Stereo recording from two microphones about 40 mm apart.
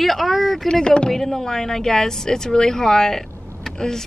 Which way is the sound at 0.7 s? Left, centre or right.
Left.